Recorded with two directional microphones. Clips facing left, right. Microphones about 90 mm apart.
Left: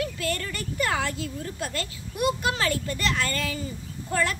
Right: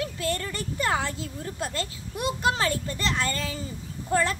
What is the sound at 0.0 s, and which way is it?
A woman's voice, 25° right (ahead or behind).